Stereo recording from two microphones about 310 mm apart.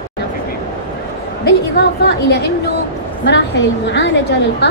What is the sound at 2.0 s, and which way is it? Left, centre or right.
A woman's voice, left.